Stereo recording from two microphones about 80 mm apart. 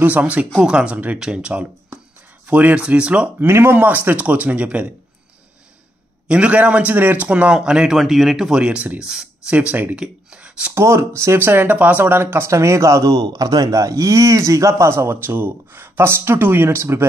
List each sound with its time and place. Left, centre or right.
0.0 s speech: centre
3.3 s speech: right
6.2 s speech: centre
10.7 s speech: right